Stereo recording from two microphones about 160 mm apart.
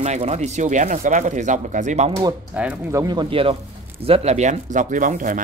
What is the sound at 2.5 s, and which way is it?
Speech, 10° right (ahead or behind).